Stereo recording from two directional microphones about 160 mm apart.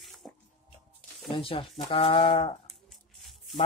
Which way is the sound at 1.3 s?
35° left (ahead or behind).